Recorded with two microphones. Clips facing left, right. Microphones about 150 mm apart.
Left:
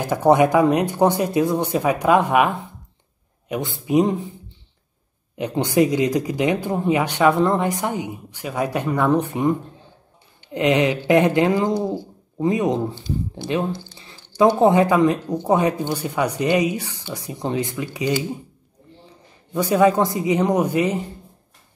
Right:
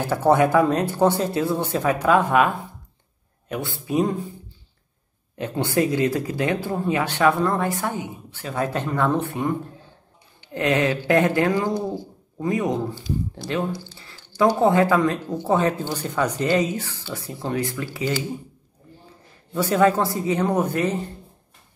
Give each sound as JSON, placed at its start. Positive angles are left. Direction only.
{"t": 0.0, "sound": "speech", "side_deg": 15}
{"t": 5.3, "sound": "speech", "side_deg": 15}
{"t": 19.5, "sound": "speech", "side_deg": 15}